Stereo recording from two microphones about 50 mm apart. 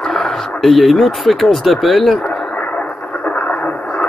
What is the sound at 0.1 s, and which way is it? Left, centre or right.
Speech, centre.